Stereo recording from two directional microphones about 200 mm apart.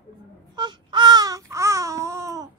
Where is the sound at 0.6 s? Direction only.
20° right (ahead or behind).